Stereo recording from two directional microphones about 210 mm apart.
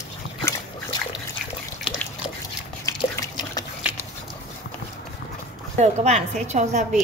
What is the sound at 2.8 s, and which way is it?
Drip, 15° left (ahead or behind).